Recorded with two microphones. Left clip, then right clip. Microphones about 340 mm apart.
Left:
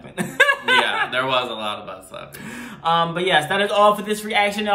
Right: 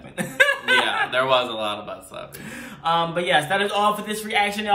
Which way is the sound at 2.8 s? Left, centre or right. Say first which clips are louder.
Left 2 dB; centre.